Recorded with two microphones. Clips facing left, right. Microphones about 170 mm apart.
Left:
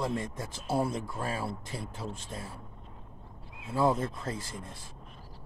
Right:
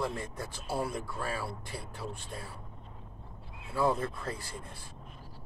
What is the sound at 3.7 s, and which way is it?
Speech, 25° left (ahead or behind).